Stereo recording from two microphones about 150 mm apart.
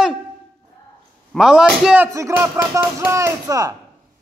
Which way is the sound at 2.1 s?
20° right (ahead or behind).